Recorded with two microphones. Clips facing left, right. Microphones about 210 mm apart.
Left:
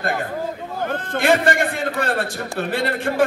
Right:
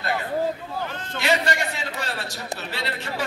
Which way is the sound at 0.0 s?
50° left (ahead or behind).